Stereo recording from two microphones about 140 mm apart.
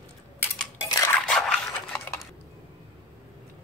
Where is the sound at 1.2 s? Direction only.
5° left (ahead or behind).